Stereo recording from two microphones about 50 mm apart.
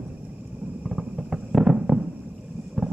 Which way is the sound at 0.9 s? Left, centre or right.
Centre.